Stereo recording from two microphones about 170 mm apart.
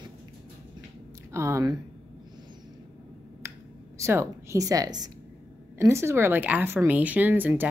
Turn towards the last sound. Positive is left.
turn(degrees=-10)  # may be behind; listen again after turning